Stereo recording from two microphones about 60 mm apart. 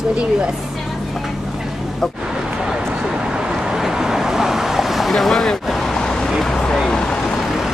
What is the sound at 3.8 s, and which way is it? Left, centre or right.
Vehicle, centre.